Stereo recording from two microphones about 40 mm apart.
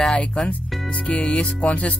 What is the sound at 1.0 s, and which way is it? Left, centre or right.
Music, left.